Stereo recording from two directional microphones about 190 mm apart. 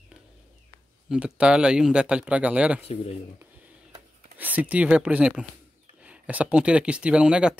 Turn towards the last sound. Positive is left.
turn(degrees=-5)  # may be behind; listen again after turning